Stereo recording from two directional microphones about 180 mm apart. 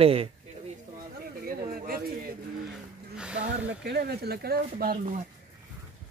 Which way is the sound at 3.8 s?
60° right (ahead or behind).